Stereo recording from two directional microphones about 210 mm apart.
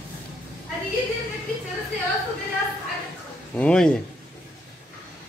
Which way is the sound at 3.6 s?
5° left (ahead or behind).